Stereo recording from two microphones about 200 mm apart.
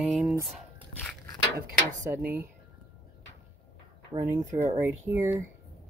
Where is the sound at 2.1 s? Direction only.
10° right (ahead or behind).